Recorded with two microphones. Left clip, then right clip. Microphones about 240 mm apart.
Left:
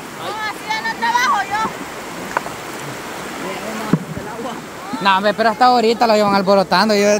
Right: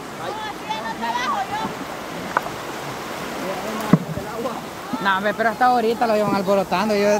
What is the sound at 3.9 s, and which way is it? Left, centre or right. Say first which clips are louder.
Boat: right 2 dB; right.